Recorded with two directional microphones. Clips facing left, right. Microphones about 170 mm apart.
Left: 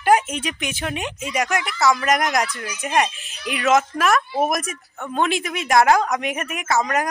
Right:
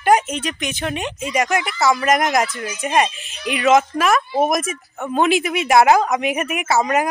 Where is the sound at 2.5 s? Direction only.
20° right (ahead or behind).